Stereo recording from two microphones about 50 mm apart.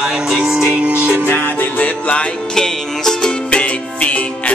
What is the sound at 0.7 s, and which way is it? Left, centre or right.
Music, right.